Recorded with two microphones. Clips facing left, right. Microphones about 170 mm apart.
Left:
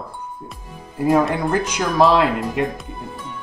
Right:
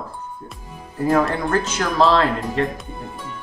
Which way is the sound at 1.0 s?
15° left (ahead or behind).